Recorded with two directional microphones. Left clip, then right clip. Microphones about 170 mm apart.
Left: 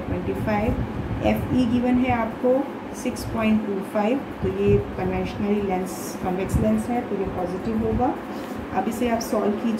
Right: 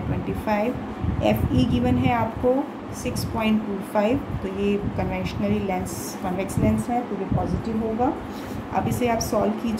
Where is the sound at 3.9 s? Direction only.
40° right (ahead or behind).